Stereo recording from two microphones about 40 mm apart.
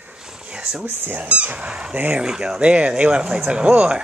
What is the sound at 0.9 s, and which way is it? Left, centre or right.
Speech, right.